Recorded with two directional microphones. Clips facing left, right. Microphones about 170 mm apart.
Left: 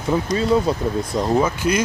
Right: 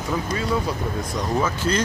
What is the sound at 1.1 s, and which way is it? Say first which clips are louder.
Speech: left 5 dB; 15° left (ahead or behind).